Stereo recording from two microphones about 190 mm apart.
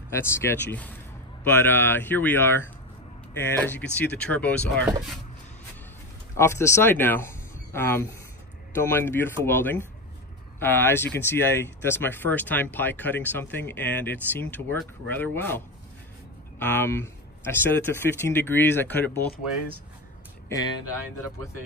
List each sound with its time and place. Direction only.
0.2 s speech: 10° left (ahead or behind)
6.3 s speech: 15° left (ahead or behind)
20.4 s speech: 20° left (ahead or behind)